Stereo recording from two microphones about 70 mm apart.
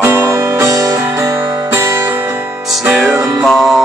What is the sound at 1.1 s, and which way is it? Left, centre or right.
Music, right.